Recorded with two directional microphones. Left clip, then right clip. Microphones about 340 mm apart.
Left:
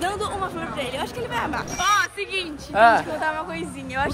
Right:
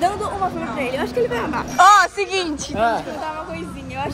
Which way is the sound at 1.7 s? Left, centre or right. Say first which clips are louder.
Right 10 dB; centre.